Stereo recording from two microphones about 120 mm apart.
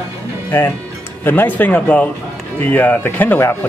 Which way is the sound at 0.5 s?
20° left (ahead or behind).